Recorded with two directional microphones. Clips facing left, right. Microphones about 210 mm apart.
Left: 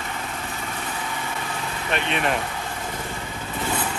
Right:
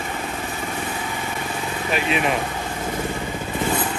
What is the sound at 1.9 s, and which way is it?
Speech, 5° right (ahead or behind).